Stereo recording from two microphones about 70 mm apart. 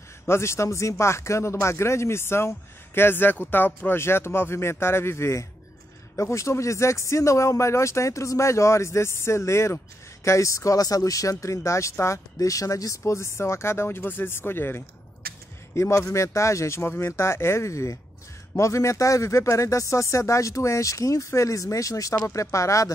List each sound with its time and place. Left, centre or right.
0.3 s speech: left
15.7 s speech: left